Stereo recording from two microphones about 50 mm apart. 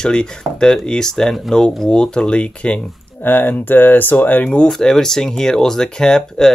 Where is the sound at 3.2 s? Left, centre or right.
Left.